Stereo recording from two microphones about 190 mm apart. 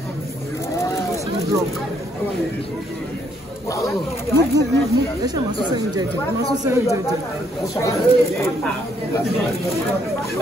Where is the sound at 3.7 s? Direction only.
15° left (ahead or behind).